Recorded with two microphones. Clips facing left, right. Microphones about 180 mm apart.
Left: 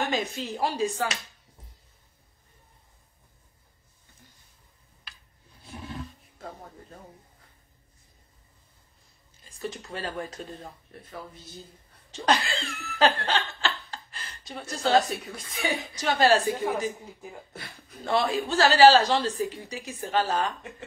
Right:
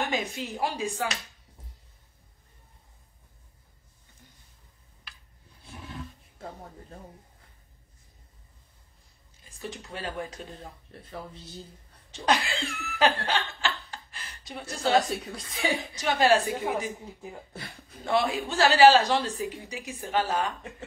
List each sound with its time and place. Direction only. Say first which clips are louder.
0.1 s a woman's voice: left 2 dB; 15° right (ahead or behind)
9.9 s a woman's voice: right 2 dB; 15° right (ahead or behind)
10.9 s speech: right 2 dB; 25° right (ahead or behind)
12.3 s laughter: left 1 dB; 15° right (ahead or behind)
15.3 s speech: right 1 dB; 30° right (ahead or behind)
16.0 s a woman's voice: left 1 dB; 15° right (ahead or behind)
18.0 s a woman's voice: left 1 dB; 15° right (ahead or behind)